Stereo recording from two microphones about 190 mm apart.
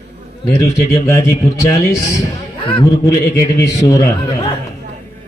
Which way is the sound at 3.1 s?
15° left (ahead or behind).